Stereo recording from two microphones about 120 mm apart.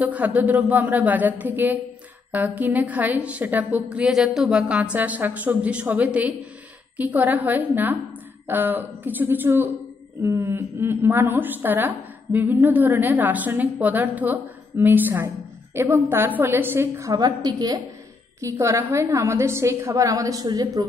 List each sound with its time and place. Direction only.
0.0 s a woman's voice: 15° right (ahead or behind); by 20.8 s 35° right (ahead or behind)